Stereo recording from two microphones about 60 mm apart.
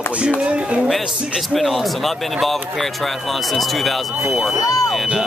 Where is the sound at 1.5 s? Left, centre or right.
Centre.